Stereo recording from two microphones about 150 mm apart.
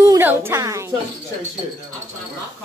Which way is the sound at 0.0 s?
15° right (ahead or behind).